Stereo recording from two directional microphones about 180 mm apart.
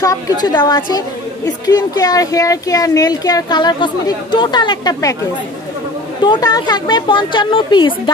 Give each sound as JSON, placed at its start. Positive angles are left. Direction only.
{"t": 0.0, "sound": "a woman's voice", "side_deg": 20}
{"t": 6.2, "sound": "a woman's voice", "side_deg": 25}